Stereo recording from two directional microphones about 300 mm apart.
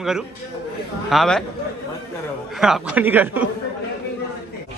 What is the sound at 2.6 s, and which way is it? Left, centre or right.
Speech, centre.